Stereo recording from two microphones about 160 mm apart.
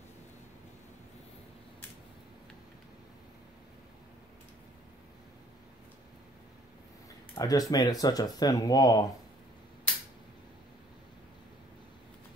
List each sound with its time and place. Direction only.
7.3 s speech: 20° left (ahead or behind)